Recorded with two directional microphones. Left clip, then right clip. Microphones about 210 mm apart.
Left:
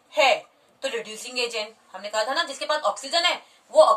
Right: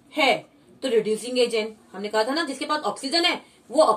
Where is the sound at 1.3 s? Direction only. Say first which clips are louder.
Right 3 dB; 20° left (ahead or behind).